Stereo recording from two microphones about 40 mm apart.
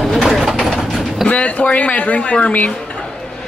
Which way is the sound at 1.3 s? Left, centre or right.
Left.